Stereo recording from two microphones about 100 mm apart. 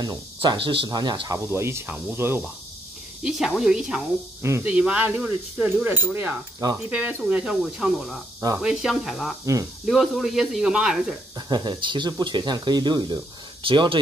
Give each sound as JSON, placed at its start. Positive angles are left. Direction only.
{"t": 0.0, "sound": "speech", "side_deg": -45}
{"t": 0.8, "sound": "speech", "side_deg": -45}
{"t": 1.5, "sound": "speech", "side_deg": -25}
{"t": 3.3, "sound": "speech", "side_deg": -5}
{"t": 4.4, "sound": "speech", "side_deg": -25}
{"t": 4.6, "sound": "speech", "side_deg": -15}
{"t": 11.3, "sound": "speech", "side_deg": -45}